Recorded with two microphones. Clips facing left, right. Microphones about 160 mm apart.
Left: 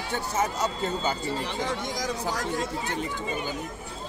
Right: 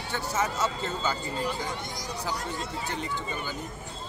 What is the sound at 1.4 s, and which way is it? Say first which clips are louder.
Speech: left 2 dB; 90° left.